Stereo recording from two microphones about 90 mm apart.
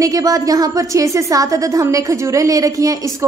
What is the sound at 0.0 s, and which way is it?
A woman's voice, 40° right (ahead or behind).